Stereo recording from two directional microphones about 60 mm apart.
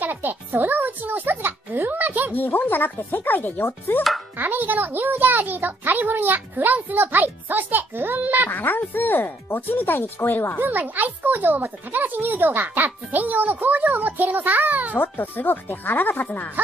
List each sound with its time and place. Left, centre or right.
0.0 s music: right
2.3 s speech: left
4.4 s a child's voice: right
8.5 s speech: left
10.6 s a child's voice: right
15.0 s speech: left